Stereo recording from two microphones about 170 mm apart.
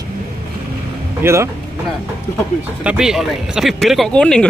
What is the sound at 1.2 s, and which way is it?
Speech, 15° right (ahead or behind).